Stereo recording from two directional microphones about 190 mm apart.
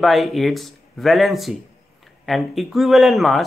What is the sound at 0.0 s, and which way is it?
Speech, centre (ahead or behind).